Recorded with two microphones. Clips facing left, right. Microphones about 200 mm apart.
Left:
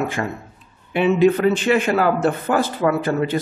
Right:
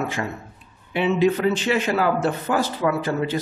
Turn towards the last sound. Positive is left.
turn(degrees=55)  # may be behind; listen again after turning